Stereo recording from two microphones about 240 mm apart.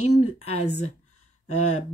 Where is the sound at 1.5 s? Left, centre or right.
Left.